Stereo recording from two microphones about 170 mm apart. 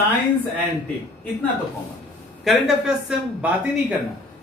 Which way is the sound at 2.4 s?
Centre (ahead or behind).